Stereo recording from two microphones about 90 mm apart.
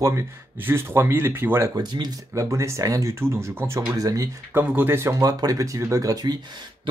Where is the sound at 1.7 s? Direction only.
55° right (ahead or behind).